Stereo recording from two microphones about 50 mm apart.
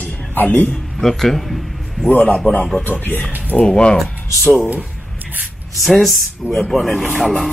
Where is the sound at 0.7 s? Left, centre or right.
Centre.